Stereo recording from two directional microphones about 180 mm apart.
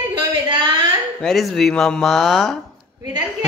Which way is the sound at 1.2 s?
Centre (ahead or behind).